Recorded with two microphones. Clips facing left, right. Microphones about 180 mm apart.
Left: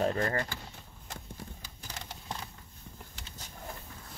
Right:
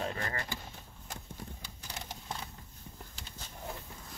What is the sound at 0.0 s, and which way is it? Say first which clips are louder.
Speech: left 8 dB; 40° left (ahead or behind).